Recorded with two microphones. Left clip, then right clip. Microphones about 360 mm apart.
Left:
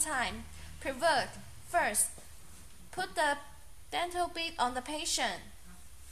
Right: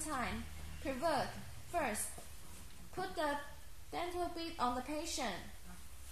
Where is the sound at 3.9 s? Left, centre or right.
Left.